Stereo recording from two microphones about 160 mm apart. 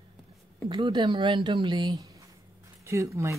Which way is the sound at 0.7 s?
30° right (ahead or behind).